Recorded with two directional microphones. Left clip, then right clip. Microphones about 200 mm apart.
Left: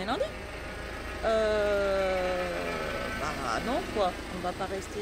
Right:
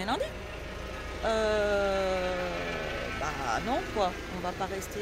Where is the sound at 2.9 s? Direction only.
55° left (ahead or behind).